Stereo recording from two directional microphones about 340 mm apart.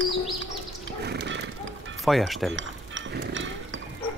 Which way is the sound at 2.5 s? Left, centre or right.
Right.